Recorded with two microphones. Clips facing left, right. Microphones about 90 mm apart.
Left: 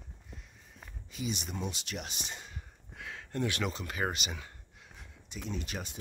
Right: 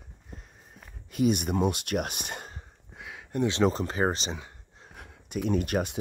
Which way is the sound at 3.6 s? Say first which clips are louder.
Right 9 dB; 35° right (ahead or behind).